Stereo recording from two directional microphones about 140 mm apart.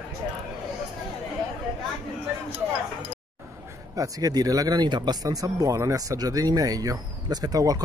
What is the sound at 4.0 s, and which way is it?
Speech, 25° right (ahead or behind).